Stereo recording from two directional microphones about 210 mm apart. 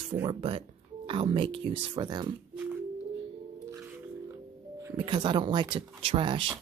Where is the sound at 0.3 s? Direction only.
25° right (ahead or behind).